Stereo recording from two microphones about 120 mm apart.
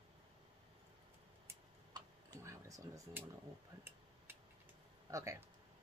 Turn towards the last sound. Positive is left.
turn(degrees=-25)  # may be behind; listen again after turning